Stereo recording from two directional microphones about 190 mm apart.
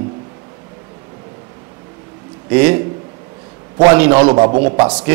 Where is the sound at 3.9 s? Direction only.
10° right (ahead or behind).